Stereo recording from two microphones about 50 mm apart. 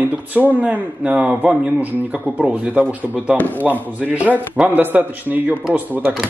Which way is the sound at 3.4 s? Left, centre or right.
Left.